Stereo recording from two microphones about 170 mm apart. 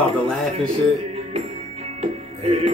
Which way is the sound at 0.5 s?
35° right (ahead or behind).